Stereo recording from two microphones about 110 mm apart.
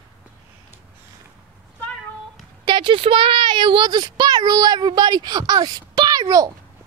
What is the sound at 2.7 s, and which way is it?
Speech, 50° right (ahead or behind).